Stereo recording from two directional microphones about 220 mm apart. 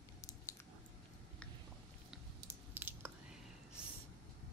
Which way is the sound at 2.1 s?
10° right (ahead or behind).